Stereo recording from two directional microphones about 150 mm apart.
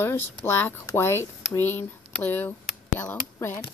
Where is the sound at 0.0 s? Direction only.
15° left (ahead or behind).